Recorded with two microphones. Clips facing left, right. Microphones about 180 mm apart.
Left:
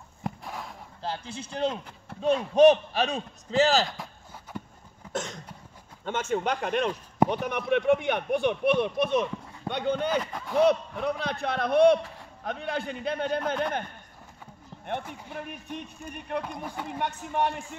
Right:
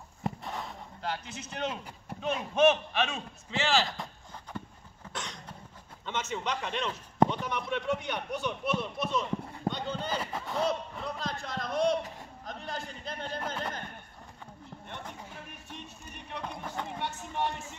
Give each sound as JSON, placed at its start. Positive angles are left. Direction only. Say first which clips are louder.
{"t": 0.2, "sound": "a sound", "louder": "even", "side_deg": 0}
{"t": 1.0, "sound": "a man's voice", "louder": "left 2 dB", "side_deg": 30}
{"t": 3.9, "sound": "a sound", "louder": "even", "side_deg": 0}
{"t": 5.1, "sound": "cough", "louder": "left 8 dB", "side_deg": 45}
{"t": 6.0, "sound": "a man's voice", "louder": "left 6 dB", "side_deg": 50}
{"t": 10.2, "sound": "speech", "louder": "even", "side_deg": -5}
{"t": 10.5, "sound": "speech", "louder": "left 9 dB", "side_deg": 65}
{"t": 15.3, "sound": "speech", "louder": "left 9 dB", "side_deg": 55}
{"t": 16.4, "sound": "speech", "louder": "left 2 dB", "side_deg": 10}
{"t": 17.0, "sound": "speech", "louder": "left 7 dB", "side_deg": 55}